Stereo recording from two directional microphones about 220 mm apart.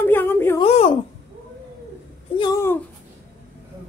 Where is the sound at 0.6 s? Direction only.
25° left (ahead or behind).